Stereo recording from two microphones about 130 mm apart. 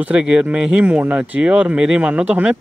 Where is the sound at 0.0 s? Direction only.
10° right (ahead or behind).